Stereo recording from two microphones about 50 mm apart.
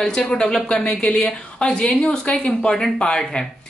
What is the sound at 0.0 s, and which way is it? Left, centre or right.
A woman's voice, centre.